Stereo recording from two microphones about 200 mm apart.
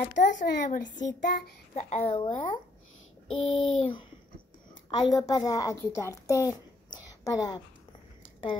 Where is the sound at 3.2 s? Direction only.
85° left.